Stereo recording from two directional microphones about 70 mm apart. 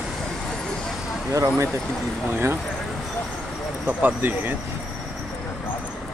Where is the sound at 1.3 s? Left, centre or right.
Right.